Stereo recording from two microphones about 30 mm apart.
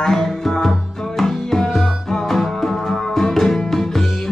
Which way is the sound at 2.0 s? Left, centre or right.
Centre.